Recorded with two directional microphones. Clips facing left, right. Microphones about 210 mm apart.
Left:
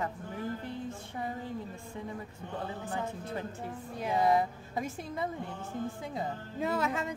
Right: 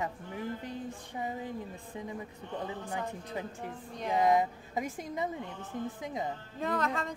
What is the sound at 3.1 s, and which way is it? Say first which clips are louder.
Speech: left 1 dB; 15° right (ahead or behind).